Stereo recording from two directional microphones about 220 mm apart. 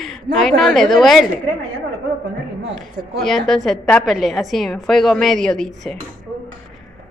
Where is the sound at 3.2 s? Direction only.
Centre (ahead or behind).